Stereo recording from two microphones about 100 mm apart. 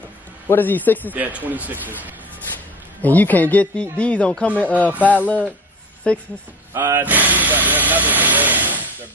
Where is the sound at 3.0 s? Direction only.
15° left (ahead or behind).